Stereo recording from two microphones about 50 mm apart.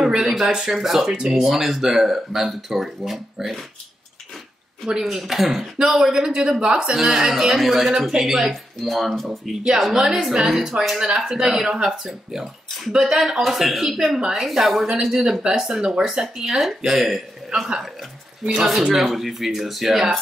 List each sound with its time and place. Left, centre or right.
0.2 s speech: centre
5.1 s speech: centre
9.9 s speech: centre
17.6 s speech: centre